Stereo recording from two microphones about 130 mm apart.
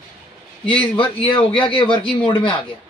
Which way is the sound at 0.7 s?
40° left (ahead or behind).